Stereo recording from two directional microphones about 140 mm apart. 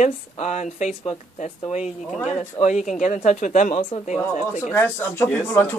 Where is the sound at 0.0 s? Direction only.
60° left (ahead or behind).